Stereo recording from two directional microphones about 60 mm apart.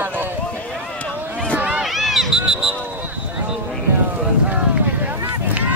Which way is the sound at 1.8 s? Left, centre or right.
Centre.